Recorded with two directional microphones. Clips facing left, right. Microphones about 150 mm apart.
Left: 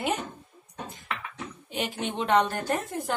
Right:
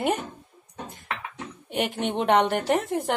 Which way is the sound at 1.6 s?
60° right (ahead or behind).